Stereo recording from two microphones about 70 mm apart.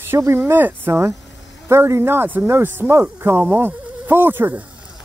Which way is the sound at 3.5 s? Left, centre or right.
Right.